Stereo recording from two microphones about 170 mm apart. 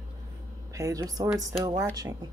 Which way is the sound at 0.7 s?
20° right (ahead or behind).